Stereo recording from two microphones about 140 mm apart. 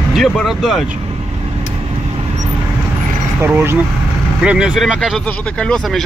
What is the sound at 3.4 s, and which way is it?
Speech, 15° right (ahead or behind).